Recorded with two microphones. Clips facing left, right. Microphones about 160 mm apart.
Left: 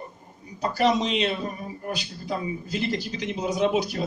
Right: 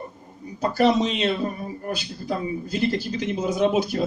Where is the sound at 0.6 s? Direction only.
40° right (ahead or behind).